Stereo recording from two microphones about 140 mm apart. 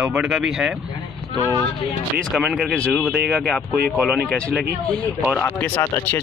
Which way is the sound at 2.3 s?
Centre (ahead or behind).